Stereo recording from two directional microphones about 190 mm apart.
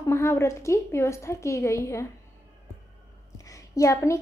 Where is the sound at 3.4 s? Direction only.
15° left (ahead or behind).